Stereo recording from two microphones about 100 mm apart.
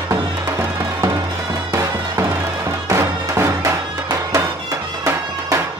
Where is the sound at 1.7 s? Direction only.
30° right (ahead or behind).